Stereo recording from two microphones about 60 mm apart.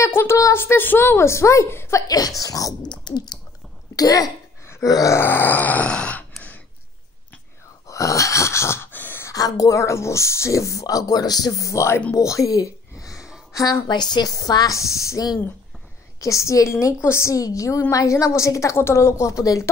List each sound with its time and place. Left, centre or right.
0.1 s a woman's voice: left
2.0 s speech: left
2.4 s speech: left
3.9 s speech: left
5.1 s grunt: left; by 6.2 s centre
7.8 s gasp: left
8.9 s gasp: left
9.3 s speech: left
12.2 s a sound: left
14.2 s a woman's voice: left
16.2 s speech: left
17.3 s speech: left
18.8 s speech: left